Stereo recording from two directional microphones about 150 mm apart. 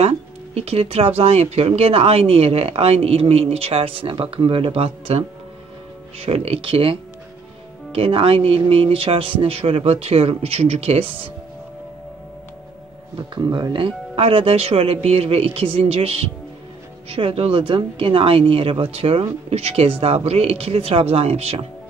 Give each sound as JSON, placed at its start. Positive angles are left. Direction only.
{"t": 0.6, "sound": "speech", "side_deg": -40}
{"t": 13.3, "sound": "speech", "side_deg": -30}